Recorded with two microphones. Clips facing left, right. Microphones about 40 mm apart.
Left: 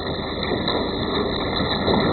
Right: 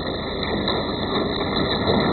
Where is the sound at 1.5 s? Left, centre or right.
Centre.